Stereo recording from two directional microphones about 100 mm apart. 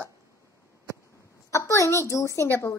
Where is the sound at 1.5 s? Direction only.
30° left (ahead or behind).